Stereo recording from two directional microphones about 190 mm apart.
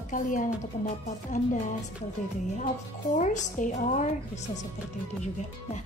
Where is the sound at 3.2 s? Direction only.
40° left (ahead or behind).